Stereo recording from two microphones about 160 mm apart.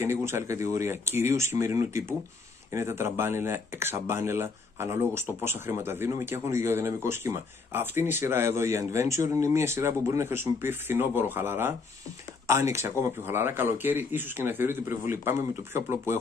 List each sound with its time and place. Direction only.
0.0 s speech: 15° right (ahead or behind)